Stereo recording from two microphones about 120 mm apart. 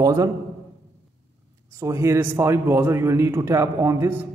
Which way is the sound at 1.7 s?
25° right (ahead or behind).